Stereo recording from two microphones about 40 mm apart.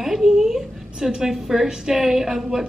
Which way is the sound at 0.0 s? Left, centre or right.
Centre.